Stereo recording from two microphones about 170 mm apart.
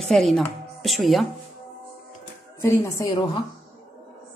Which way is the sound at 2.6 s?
15° left (ahead or behind).